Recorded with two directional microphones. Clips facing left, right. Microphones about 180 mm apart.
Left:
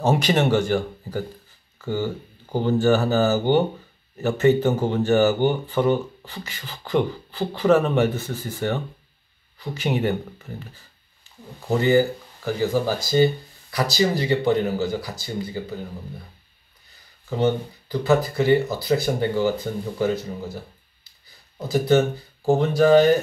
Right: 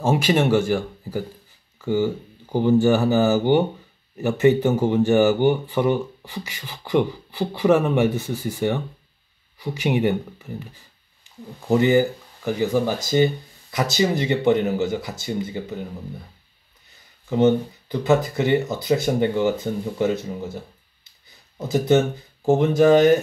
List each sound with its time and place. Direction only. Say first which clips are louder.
0.0 s speech: right 1 dB; 5° right (ahead or behind)
2.5 s speech: right 2 dB; 15° right (ahead or behind)
11.3 s a sound: right 6 dB; 15° right (ahead or behind)
11.7 s speech: right 1 dB; 15° right (ahead or behind)
17.4 s speech: right 4 dB; 20° right (ahead or behind)
21.5 s speech: right 1 dB; 20° right (ahead or behind)